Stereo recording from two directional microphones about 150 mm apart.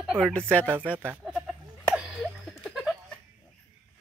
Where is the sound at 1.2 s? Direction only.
Centre (ahead or behind).